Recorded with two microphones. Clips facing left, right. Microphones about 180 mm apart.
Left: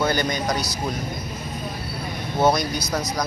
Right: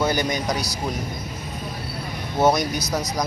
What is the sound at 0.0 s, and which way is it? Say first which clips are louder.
Speech: even; 15° right (ahead or behind).